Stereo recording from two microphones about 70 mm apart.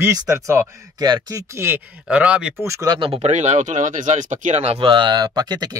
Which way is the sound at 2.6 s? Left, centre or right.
Right.